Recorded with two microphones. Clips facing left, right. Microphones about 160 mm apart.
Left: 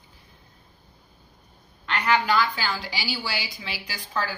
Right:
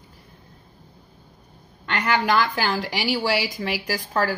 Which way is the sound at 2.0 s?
60° right (ahead or behind).